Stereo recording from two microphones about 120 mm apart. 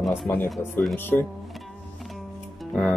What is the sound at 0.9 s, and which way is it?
Speech, 15° left (ahead or behind).